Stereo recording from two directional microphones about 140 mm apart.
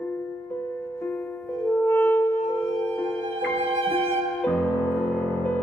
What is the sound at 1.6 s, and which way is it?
Music, 15° left (ahead or behind).